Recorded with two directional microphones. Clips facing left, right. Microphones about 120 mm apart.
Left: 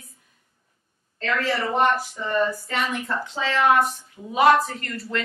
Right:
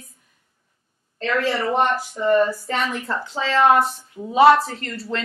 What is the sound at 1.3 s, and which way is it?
A woman's voice, 30° right (ahead or behind).